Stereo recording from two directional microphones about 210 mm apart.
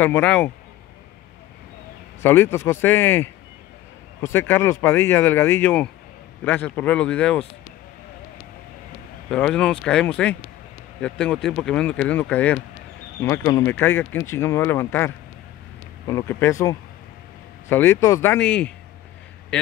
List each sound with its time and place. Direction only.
0.0 s speech: 10° left (ahead or behind)
2.2 s speech: 10° left (ahead or behind)
9.3 s a man's voice: 5° left (ahead or behind)